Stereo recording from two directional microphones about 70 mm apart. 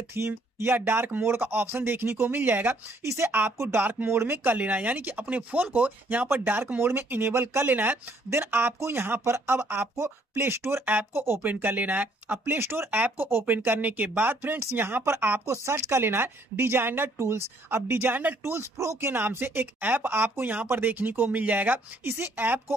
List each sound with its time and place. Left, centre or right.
0.2 s speech: right
3.0 s speech: right
3.3 s speech: right
4.6 s speech: right
15.4 s speech: right
17.2 s speech: right